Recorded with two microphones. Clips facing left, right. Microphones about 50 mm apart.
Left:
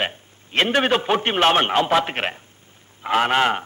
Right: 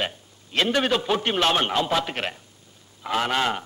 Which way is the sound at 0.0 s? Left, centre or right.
Left.